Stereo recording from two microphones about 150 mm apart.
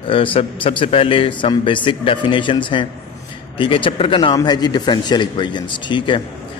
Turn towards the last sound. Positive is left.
turn(degrees=30)  # may be behind; listen again after turning